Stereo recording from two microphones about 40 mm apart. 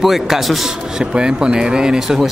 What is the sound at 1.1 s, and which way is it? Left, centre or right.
Speech, right.